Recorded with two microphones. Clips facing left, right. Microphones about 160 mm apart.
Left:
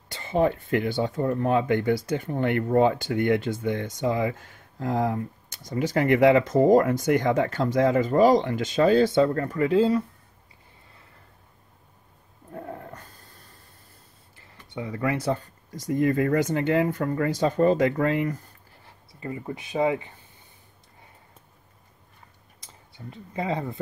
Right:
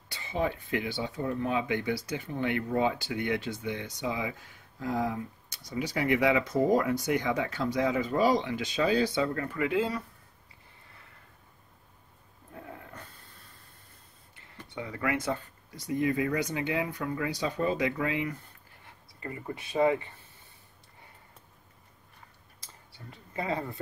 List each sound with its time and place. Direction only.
0.1 s speech: 50° left (ahead or behind); by 10.0 s 30° left (ahead or behind)
12.5 s dog: 45° left (ahead or behind)
14.8 s speech: 25° left (ahead or behind); by 18.4 s 50° left (ahead or behind)
19.1 s speech: 20° left (ahead or behind)
22.6 s speech: 20° left (ahead or behind)